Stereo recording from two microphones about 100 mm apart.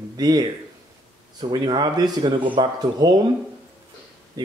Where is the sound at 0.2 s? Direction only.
45° right (ahead or behind).